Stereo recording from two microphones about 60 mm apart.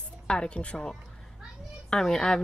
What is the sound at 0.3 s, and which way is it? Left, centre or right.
A woman's voice, centre.